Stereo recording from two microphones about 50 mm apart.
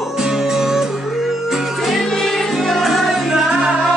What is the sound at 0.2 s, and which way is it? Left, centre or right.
Music, centre.